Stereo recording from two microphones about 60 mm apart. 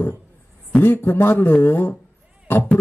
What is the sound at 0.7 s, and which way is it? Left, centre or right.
A man's voice, left.